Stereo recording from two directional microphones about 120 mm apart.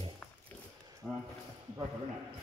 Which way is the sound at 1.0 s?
Centre (ahead or behind).